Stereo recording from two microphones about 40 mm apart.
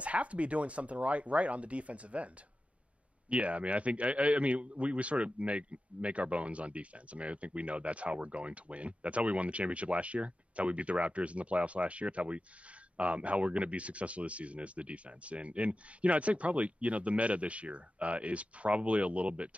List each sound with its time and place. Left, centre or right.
0.0 s a man's voice: right